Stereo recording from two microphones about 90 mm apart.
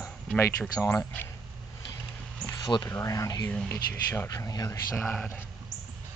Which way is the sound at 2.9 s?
35° left (ahead or behind).